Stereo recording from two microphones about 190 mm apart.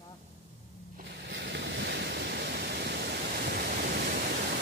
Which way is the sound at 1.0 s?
65° right (ahead or behind).